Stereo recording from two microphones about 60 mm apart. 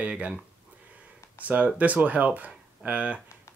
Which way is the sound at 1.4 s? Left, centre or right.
Right.